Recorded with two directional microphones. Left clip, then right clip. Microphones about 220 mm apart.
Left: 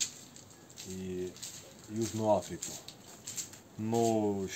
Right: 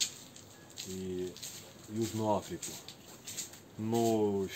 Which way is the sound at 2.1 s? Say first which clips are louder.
Left 4 dB; 20° left (ahead or behind).